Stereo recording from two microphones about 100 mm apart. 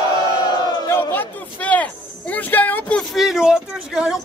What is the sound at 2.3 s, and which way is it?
Speech, 15° left (ahead or behind).